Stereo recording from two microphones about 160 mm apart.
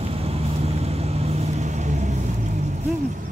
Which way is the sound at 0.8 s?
40° right (ahead or behind).